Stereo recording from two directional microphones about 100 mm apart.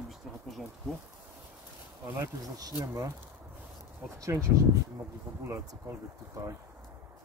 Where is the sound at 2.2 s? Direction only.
35° right (ahead or behind).